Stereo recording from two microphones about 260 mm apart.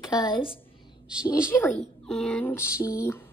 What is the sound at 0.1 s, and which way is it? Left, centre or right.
Speech, centre.